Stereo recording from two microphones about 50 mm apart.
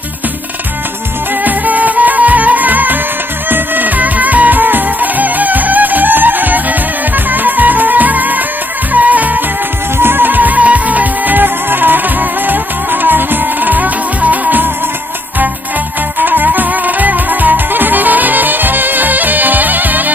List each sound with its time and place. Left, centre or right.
1.4 s music: right
9.9 s music: right
16.2 s music: right